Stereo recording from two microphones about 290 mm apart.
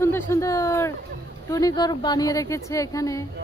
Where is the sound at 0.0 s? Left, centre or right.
Centre.